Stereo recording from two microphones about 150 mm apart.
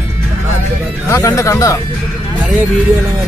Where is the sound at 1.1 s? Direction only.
20° left (ahead or behind).